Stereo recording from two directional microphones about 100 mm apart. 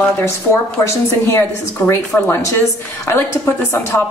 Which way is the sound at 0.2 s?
25° left (ahead or behind).